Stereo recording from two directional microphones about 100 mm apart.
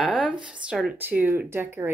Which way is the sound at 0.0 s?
5° right (ahead or behind).